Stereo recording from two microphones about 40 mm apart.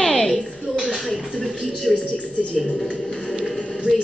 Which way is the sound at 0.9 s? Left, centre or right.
Centre.